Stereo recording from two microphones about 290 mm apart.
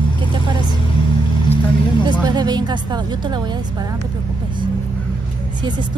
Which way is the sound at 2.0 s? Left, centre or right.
Centre.